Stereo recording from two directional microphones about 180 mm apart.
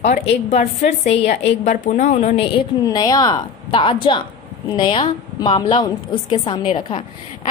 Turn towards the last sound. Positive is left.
turn(degrees=25)  # may be behind; listen again after turning